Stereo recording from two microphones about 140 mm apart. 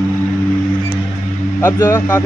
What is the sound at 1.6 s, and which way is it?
Speech, 20° left (ahead or behind).